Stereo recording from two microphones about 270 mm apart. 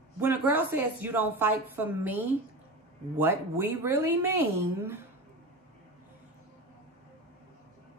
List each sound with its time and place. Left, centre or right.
0.2 s a woman's voice: centre